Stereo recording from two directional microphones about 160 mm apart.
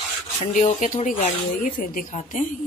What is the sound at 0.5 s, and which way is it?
A woman's voice, 50° left (ahead or behind).